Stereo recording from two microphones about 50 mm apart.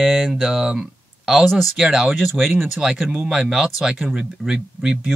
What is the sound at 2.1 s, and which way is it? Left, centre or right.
Speech, centre.